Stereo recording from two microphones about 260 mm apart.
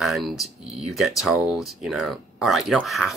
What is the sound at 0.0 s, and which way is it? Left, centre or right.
Speech, centre.